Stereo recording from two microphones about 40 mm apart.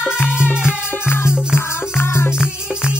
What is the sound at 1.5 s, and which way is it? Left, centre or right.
Music, left.